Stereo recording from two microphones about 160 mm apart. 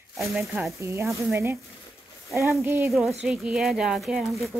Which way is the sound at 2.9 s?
Centre (ahead or behind).